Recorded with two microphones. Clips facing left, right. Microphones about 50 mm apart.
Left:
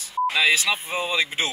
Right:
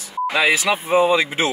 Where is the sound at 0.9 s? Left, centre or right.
Centre.